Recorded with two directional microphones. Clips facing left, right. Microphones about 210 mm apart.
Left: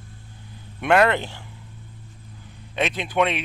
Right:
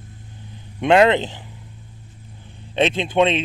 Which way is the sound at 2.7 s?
25° right (ahead or behind).